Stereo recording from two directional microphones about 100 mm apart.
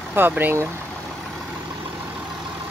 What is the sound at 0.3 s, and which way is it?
Speech, 20° right (ahead or behind).